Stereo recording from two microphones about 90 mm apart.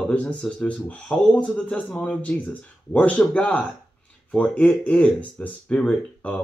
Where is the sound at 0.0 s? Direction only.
15° left (ahead or behind).